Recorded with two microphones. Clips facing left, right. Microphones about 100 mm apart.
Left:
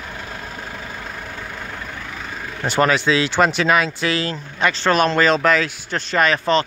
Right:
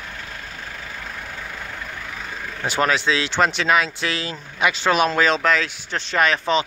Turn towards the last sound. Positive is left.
turn(degrees=0)  # may be behind; listen again after turning